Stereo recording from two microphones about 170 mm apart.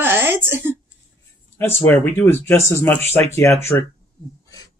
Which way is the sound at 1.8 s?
10° left (ahead or behind).